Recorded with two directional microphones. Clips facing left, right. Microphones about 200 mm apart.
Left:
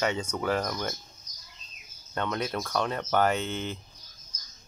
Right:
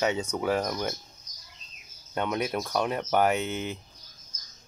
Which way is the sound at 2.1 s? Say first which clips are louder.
Right 2 dB; 10° right (ahead or behind).